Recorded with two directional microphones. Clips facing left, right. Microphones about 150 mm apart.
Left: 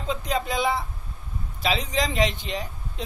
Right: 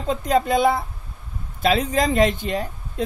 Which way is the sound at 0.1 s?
50° right (ahead or behind).